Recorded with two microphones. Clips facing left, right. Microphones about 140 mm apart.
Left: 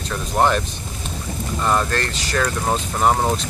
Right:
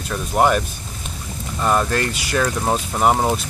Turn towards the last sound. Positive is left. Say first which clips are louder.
# right 1 dB
turn(degrees=-5)  # may be behind; listen again after turning